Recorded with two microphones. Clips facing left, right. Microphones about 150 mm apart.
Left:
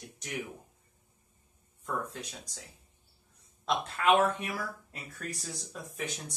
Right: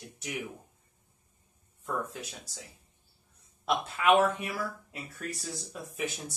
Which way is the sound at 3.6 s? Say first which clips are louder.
Right 1 dB; 10° right (ahead or behind).